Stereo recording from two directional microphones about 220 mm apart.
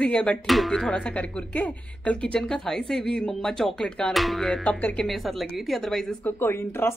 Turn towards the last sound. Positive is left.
turn(degrees=10)  # may be behind; listen again after turning